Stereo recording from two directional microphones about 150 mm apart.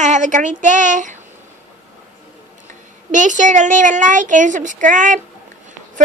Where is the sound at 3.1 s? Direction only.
55° right (ahead or behind).